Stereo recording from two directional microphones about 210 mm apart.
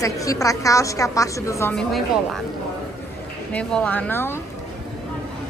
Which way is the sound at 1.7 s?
5° left (ahead or behind).